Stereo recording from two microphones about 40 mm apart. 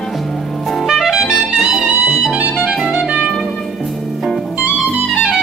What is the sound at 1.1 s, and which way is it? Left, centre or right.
Music, centre.